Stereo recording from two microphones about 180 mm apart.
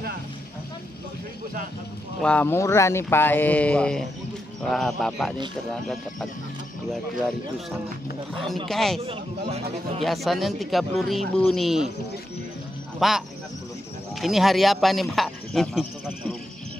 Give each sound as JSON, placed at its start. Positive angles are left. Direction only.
{"t": 2.2, "sound": "speech", "side_deg": 10}
{"t": 9.5, "sound": "a man's voice", "side_deg": -35}
{"t": 10.0, "sound": "speech", "side_deg": 0}
{"t": 13.0, "sound": "speech", "side_deg": 0}
{"t": 14.2, "sound": "speech", "side_deg": 0}